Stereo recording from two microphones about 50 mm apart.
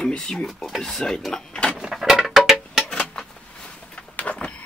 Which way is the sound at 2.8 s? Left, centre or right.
Centre.